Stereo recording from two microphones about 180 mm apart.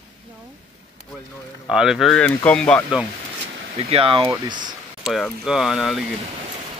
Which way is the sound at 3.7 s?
35° right (ahead or behind).